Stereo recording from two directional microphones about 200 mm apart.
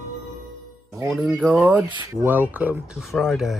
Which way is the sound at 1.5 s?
5° right (ahead or behind).